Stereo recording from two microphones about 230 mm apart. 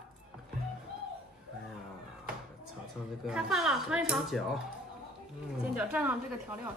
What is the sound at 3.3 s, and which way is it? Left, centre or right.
Speech, centre.